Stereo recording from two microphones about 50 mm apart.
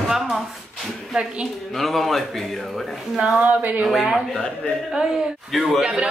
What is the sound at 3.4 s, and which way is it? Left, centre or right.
Speech, right.